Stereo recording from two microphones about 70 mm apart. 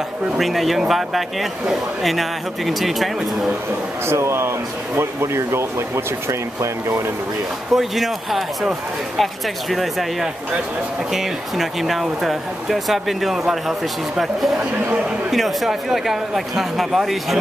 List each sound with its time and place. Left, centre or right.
0.4 s speech: centre
4.1 s speech: right
7.7 s speech: centre